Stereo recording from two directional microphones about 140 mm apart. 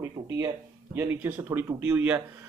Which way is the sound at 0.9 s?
15° right (ahead or behind).